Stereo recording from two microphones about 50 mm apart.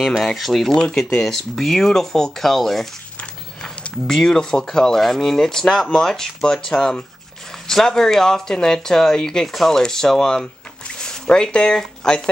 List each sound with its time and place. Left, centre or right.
0.2 s speech: centre
0.7 s speech: centre
4.1 s speech: centre